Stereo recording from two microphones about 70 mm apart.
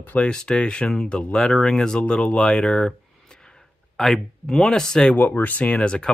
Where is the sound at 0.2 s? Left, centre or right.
Centre.